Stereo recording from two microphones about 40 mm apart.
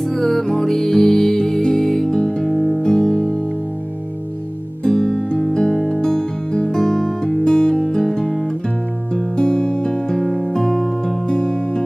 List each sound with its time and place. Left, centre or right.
0.0 s music: centre
2.0 s music: left
4.8 s music: centre
6.8 s music: centre
11.2 s music: left